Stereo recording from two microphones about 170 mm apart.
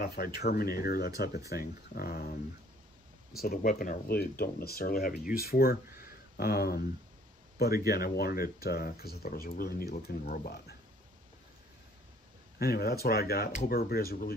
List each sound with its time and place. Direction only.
0.0 s speech: 65° left (ahead or behind)
3.4 s speech: 60° left (ahead or behind)
6.0 s a sound: 65° left (ahead or behind)
7.5 s speech: 65° left (ahead or behind)
12.5 s speech: 65° left (ahead or behind)